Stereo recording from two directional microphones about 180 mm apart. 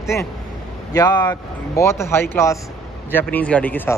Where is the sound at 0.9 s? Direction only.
20° left (ahead or behind).